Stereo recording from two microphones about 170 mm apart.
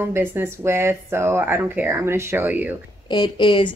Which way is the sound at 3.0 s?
25° left (ahead or behind).